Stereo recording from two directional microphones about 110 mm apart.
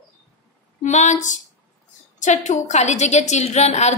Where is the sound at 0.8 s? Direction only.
90° left.